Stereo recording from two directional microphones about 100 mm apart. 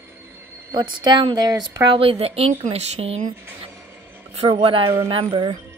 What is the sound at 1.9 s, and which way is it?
Speech, 75° right (ahead or behind).